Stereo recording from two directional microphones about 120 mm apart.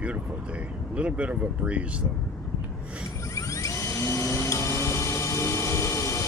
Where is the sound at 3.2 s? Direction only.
25° left (ahead or behind).